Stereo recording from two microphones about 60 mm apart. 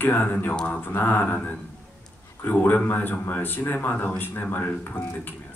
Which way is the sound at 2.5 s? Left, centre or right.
Left.